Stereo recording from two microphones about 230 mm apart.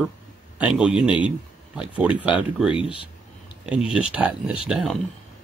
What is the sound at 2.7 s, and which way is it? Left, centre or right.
Speech, left.